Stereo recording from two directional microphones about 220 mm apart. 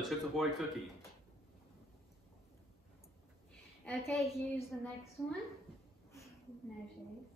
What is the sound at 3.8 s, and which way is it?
A man's voice, 5° left (ahead or behind).